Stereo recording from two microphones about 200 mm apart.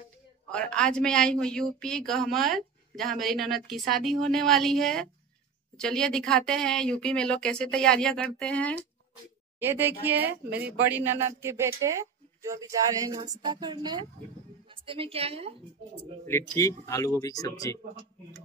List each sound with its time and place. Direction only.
0.5 s a woman's voice: 5° left (ahead or behind)
9.6 s a woman's voice: 10° right (ahead or behind); by 15.5 s 30° right (ahead or behind)
16.3 s speech: 15° left (ahead or behind)